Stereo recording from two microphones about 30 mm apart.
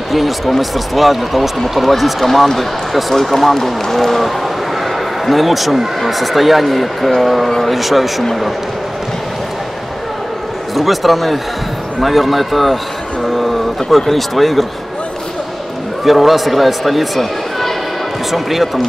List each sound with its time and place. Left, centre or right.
0.1 s speech: centre
10.7 s speech: centre
16.0 s speech: centre